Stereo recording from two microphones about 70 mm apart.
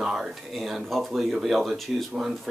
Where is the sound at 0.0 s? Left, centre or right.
Centre.